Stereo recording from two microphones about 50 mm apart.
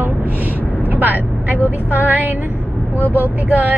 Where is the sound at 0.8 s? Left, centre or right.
Right.